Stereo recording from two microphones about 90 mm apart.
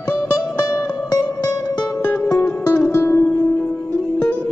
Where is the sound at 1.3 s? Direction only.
40° left (ahead or behind).